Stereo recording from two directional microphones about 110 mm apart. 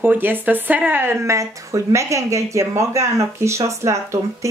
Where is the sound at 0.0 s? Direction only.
15° right (ahead or behind).